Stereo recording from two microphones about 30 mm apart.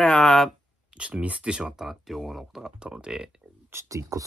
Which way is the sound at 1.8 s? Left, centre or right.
Centre.